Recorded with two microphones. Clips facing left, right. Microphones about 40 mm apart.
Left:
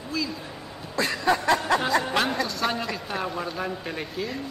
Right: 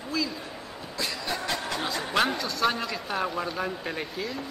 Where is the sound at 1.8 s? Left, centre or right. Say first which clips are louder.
Left 3 dB; centre.